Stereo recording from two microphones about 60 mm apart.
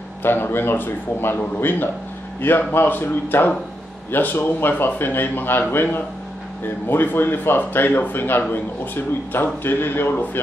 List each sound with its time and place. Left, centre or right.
0.2 s a man's voice: left